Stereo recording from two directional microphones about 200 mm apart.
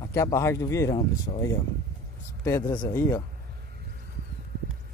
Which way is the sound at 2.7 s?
20° left (ahead or behind).